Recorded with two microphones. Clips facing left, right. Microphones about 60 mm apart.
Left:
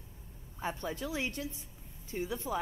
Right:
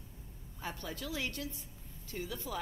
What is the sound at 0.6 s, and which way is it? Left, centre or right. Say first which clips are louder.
Speech: left 5 dB; left.